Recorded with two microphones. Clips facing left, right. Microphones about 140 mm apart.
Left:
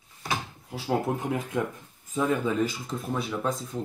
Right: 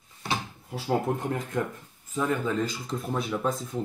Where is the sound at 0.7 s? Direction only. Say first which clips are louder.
Even; 5° left (ahead or behind).